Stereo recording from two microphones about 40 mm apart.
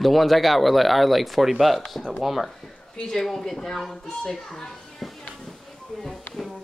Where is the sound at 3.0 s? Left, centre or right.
Centre.